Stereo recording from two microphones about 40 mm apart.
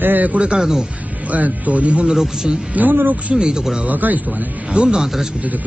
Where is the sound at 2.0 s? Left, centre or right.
Centre.